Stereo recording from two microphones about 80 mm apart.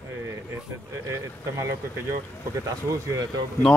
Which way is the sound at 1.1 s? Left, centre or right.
Right.